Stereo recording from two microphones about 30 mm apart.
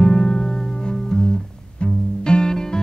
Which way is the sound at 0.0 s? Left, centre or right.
Left.